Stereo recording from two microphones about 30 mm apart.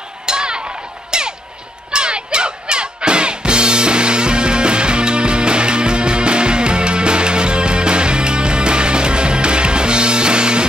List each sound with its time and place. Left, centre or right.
0.3 s music: right